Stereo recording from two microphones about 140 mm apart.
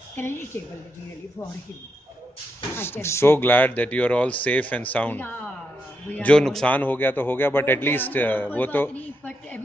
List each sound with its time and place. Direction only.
0.1 s a woman's voice: 15° left (ahead or behind)
2.7 s a man's voice: 15° left (ahead or behind)